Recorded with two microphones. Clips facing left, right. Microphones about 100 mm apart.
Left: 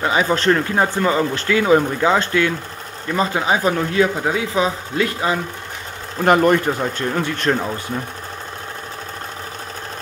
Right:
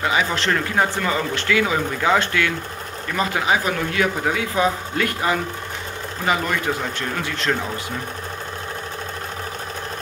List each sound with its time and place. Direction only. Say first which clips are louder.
0.0 s speech: left 4 dB; 30° left (ahead or behind)
6.2 s speech: left 8 dB; 50° left (ahead or behind)
6.8 s speech: left 5 dB; 35° left (ahead or behind)